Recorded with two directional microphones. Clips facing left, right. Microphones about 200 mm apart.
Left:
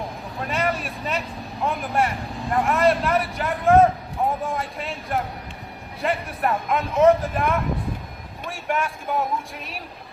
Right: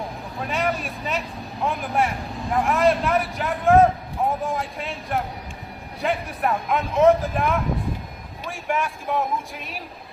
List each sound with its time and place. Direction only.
0.4 s speech: centre (ahead or behind)